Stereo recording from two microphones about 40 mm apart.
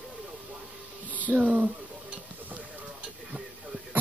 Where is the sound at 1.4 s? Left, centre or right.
Right.